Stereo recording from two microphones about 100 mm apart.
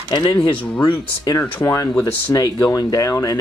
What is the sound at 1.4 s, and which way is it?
Speech, 30° left (ahead or behind).